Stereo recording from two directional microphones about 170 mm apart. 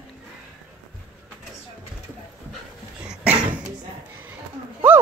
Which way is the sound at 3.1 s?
10° right (ahead or behind).